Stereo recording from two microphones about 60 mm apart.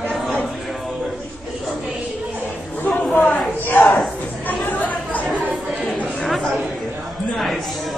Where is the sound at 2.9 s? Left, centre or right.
Left.